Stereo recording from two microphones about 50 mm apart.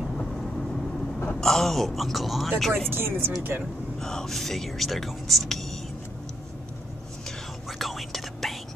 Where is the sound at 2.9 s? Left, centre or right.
Right.